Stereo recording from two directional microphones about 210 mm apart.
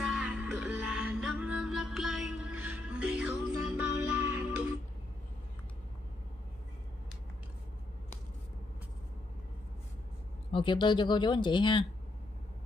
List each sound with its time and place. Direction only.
0.0 s music: 5° right (ahead or behind)
10.5 s speech: 25° left (ahead or behind)